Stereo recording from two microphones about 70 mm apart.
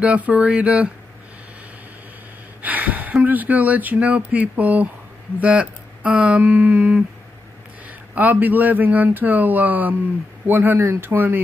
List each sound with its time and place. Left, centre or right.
0.0 s speech: right
2.6 s speech: right
8.1 s speech: right